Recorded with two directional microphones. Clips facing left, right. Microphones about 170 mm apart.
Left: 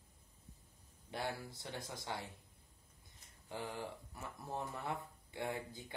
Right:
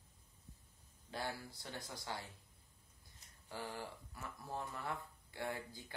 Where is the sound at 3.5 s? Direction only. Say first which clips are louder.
Left 2 dB; 20° left (ahead or behind).